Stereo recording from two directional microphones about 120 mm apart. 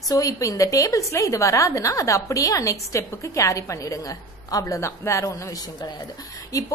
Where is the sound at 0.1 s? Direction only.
30° left (ahead or behind).